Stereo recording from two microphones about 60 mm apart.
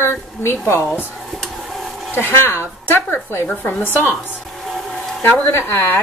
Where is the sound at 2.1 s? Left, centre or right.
Left.